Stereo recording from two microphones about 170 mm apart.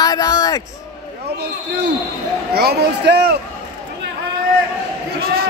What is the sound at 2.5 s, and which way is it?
Speech, 70° right (ahead or behind).